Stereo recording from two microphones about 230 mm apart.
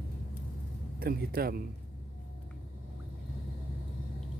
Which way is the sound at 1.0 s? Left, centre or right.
Right.